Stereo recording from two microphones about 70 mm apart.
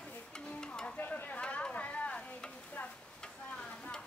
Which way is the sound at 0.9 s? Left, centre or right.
Left.